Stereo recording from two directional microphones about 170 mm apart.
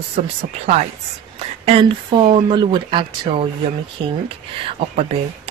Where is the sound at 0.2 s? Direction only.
40° right (ahead or behind).